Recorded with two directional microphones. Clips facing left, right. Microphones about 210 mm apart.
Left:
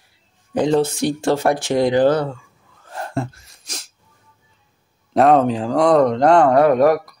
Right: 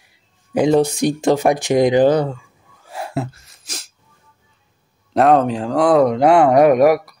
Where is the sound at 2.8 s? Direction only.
10° right (ahead or behind).